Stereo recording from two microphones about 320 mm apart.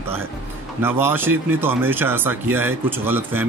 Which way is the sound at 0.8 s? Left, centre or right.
Centre.